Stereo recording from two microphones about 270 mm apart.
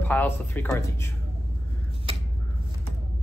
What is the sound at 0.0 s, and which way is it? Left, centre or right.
Speech, centre.